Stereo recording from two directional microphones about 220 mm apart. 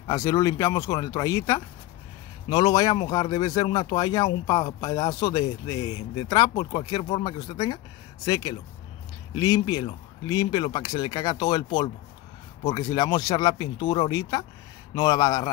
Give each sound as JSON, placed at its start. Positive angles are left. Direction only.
{"t": 0.0, "sound": "speech", "side_deg": 15}